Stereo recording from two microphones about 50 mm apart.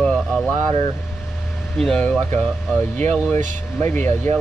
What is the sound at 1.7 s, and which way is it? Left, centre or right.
Speech, centre.